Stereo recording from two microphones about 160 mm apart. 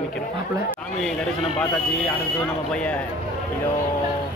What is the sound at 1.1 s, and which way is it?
A man's voice, 10° left (ahead or behind).